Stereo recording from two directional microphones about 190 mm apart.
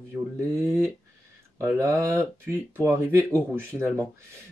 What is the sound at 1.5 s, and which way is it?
Speech, 15° right (ahead or behind).